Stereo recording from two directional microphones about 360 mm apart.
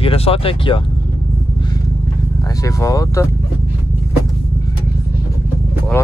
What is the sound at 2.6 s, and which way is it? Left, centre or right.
Speech, centre.